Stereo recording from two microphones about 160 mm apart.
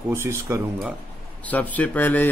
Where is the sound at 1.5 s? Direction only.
10° left (ahead or behind).